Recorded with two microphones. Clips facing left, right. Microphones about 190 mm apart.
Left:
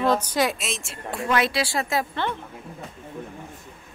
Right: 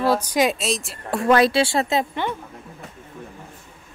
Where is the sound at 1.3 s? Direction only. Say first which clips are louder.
Right 2 dB; 30° right (ahead or behind); by 2.4 s 15° right (ahead or behind).